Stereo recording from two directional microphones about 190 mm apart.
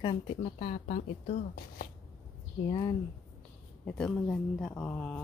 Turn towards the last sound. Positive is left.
turn(degrees=5)  # may be behind; listen again after turning